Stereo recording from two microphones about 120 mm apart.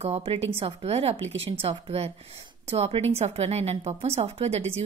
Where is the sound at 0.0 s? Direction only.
55° right (ahead or behind).